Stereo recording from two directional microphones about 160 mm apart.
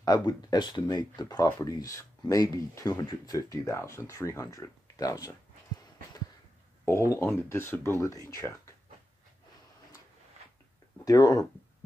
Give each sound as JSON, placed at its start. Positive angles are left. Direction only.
{"t": 0.0, "sound": "speech", "side_deg": 20}
{"t": 6.9, "sound": "speech", "side_deg": 15}
{"t": 11.1, "sound": "speech", "side_deg": 20}